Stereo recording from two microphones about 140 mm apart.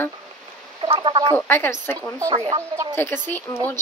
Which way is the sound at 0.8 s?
35° right (ahead or behind).